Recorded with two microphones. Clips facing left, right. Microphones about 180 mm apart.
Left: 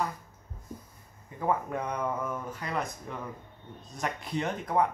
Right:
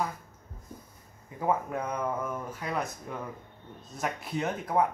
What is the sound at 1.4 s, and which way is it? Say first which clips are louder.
Speech: right 1 dB; 5° right (ahead or behind).